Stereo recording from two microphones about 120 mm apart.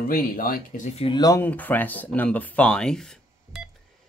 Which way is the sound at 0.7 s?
90° left.